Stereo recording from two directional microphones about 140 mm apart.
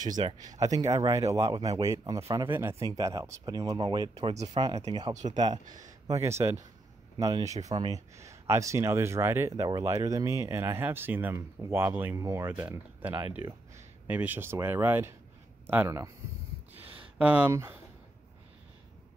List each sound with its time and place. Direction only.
0.0 s speech: 30° right (ahead or behind)
4.3 s speech: 50° right (ahead or behind)
4.6 s speech: 30° right (ahead or behind)
5.1 s speech: 60° right (ahead or behind)
5.4 s speech: 30° right (ahead or behind); by 15.9 s 10° right (ahead or behind)
17.2 s speech: 10° right (ahead or behind)